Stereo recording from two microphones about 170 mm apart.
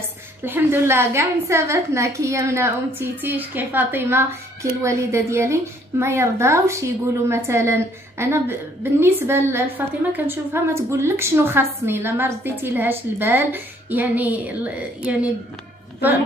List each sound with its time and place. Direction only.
0.4 s a woman's voice: 10° right (ahead or behind)